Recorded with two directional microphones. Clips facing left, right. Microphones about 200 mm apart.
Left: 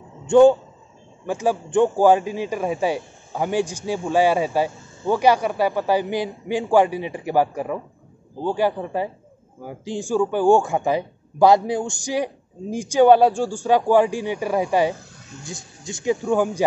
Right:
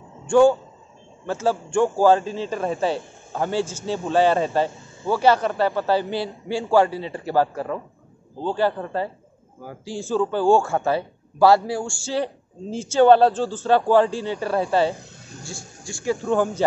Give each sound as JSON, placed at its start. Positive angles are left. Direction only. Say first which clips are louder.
{"t": 0.3, "sound": "a man's voice", "louder": "left 3 dB", "side_deg": 20}